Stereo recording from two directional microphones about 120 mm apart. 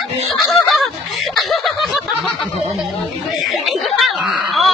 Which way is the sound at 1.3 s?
Centre (ahead or behind).